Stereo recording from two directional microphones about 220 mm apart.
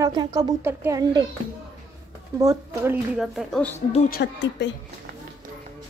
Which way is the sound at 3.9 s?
35° left (ahead or behind).